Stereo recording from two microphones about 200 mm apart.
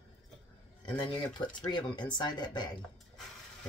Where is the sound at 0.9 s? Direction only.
20° left (ahead or behind).